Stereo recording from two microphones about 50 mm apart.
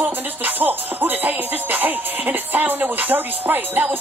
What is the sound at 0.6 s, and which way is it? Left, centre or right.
Music, right.